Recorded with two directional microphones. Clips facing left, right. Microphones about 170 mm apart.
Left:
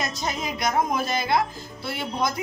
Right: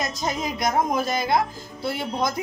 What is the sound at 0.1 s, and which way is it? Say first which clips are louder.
Speech: right 2 dB; 45° right (ahead or behind).